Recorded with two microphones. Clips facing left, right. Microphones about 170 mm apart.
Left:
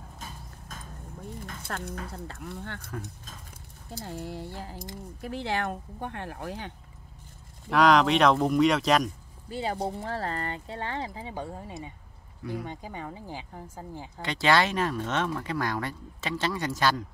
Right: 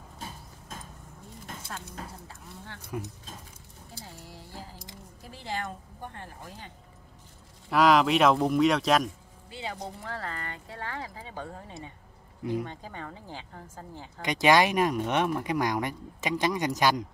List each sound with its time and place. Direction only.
1.4 s speech: 60° left (ahead or behind)
3.9 s speech: 60° left (ahead or behind)
7.7 s speech: 5° right (ahead or behind)
9.5 s speech: 40° left (ahead or behind); by 14.2 s 15° left (ahead or behind)
14.2 s speech: 15° right (ahead or behind)